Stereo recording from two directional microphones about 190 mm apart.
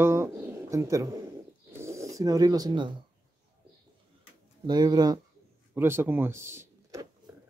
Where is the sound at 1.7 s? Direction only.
15° right (ahead or behind).